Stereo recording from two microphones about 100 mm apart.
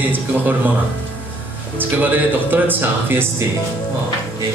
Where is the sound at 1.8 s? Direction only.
20° right (ahead or behind).